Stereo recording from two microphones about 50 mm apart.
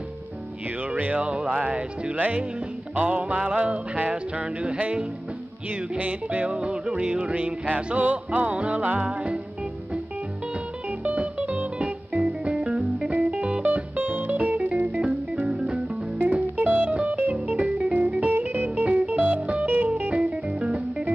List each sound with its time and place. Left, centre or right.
0.8 s music: right
2.1 s speech: right
3.0 s music: right
10.9 s music: right
16.2 s music: right
19.7 s music: right
20.1 s music: right